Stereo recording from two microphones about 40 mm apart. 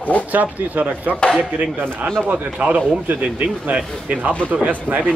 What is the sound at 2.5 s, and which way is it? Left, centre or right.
Speech, right.